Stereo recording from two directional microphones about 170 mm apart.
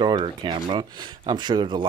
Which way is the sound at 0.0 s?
25° right (ahead or behind).